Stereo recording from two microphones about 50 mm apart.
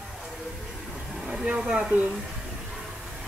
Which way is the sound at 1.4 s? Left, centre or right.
Centre.